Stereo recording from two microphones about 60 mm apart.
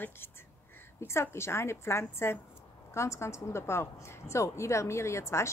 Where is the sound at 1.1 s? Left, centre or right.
Left.